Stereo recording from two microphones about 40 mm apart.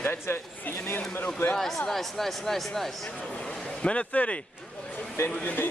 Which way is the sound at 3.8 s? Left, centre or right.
Left.